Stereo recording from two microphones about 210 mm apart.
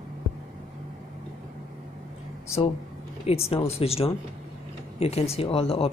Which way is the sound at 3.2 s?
30° left (ahead or behind).